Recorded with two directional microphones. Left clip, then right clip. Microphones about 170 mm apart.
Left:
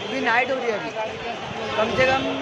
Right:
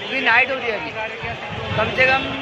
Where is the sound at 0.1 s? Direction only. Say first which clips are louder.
Right 5 dB; 20° left (ahead or behind).